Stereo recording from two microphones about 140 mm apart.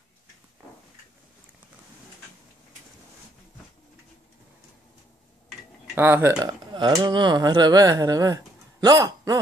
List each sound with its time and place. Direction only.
5.9 s speech: 15° right (ahead or behind)
6.4 s a man's voice: 30° right (ahead or behind)